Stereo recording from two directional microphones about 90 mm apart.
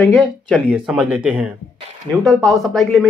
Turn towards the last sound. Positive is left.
turn(degrees=0)  # may be behind; listen again after turning